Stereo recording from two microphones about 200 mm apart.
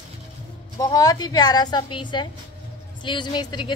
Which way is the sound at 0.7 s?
20° left (ahead or behind).